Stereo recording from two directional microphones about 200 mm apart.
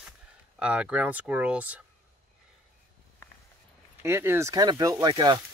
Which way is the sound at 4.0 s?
10° right (ahead or behind).